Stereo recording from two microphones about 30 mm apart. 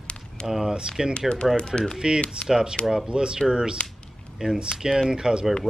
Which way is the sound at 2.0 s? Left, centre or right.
Right.